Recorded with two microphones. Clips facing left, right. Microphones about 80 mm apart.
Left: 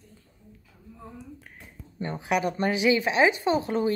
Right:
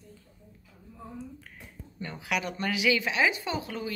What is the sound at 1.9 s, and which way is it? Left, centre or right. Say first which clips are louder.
Speech: left 6 dB; left.